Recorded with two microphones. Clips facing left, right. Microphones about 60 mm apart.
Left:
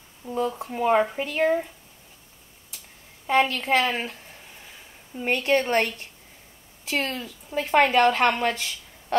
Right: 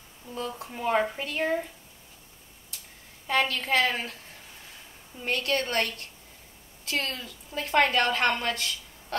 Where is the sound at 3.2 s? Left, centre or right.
Centre.